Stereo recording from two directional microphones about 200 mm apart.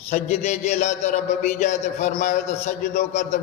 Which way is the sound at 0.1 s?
35° left (ahead or behind).